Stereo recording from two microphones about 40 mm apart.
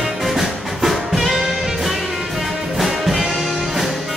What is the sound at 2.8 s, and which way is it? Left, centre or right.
Music, centre.